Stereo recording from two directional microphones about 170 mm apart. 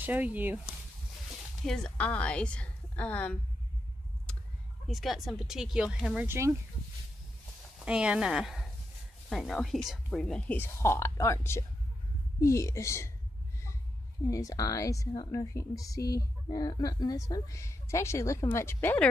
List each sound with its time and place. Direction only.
0.0 s speech: 10° right (ahead or behind)
1.7 s speech: 5° left (ahead or behind)
4.3 s a sound: 5° left (ahead or behind)
4.8 s speech: centre (ahead or behind)
6.2 s speech: 15° right (ahead or behind)
7.8 s speech: 5° right (ahead or behind); by 13.1 s 15° left (ahead or behind)
14.2 s speech: 20° left (ahead or behind)